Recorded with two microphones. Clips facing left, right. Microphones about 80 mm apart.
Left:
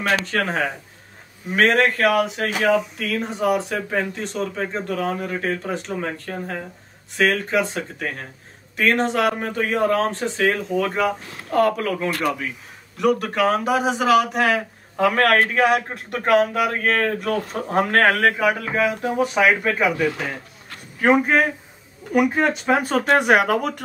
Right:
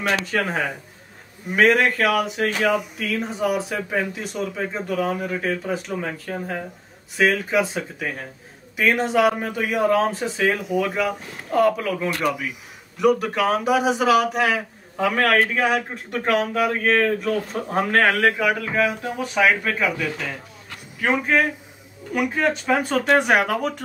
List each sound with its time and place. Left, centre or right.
0.2 s speech: centre
21.0 s speech: left
22.5 s speech: centre